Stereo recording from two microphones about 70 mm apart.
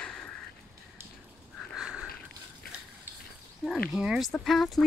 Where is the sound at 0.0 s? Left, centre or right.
Centre.